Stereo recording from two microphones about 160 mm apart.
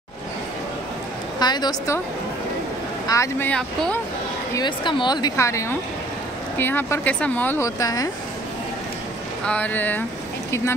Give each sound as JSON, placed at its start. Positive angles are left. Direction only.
{"t": 1.4, "sound": "a woman's voice", "side_deg": 25}
{"t": 3.1, "sound": "speech", "side_deg": 15}
{"t": 4.6, "sound": "a woman's voice", "side_deg": 30}
{"t": 9.5, "sound": "speech", "side_deg": 10}